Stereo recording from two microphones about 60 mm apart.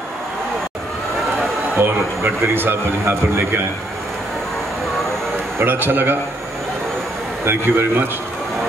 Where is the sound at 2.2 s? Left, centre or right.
Right.